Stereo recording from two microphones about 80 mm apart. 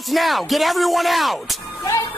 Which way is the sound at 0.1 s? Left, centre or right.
Centre.